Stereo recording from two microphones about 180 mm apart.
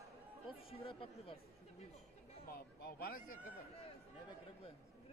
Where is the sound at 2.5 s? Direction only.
55° left (ahead or behind).